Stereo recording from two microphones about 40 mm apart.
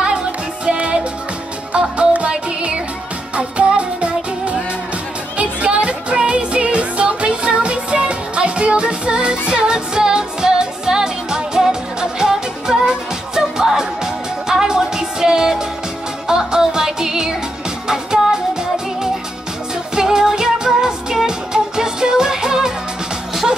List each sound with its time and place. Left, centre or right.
2.0 s music: right
20.0 s music: centre